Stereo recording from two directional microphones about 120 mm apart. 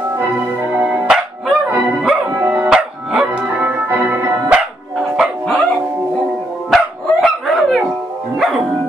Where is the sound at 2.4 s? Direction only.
20° right (ahead or behind).